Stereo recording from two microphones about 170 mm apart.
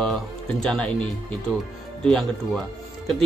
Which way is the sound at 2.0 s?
5° left (ahead or behind).